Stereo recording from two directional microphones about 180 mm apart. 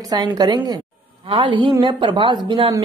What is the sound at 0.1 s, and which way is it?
Speech, 20° right (ahead or behind).